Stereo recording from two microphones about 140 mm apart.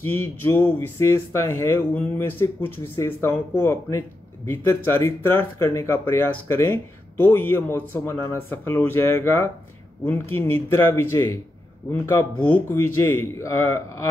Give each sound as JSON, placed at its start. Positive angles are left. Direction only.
{"t": 0.0, "sound": "speech", "side_deg": 15}